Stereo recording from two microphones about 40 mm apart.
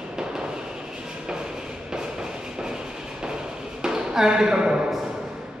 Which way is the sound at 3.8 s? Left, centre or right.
Centre.